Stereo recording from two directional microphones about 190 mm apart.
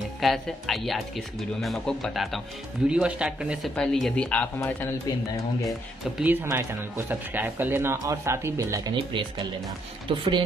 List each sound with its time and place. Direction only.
0.2 s speech: centre (ahead or behind)
6.1 s speech: 10° right (ahead or behind); by 10.4 s 25° right (ahead or behind)